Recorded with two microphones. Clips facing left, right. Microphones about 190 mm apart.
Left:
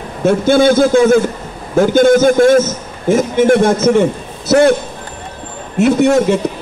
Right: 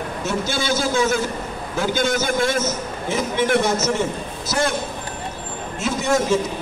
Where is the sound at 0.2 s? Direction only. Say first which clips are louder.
Left 15 dB; 55° left (ahead or behind).